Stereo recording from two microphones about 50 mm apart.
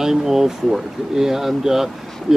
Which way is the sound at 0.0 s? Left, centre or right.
Centre.